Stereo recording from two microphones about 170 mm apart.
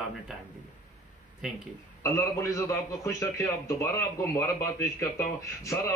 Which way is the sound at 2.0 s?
20° left (ahead or behind).